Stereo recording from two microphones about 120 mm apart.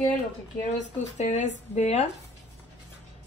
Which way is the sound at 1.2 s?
75° left (ahead or behind).